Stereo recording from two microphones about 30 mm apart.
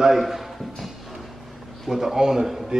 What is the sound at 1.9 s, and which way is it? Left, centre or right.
Speech, centre.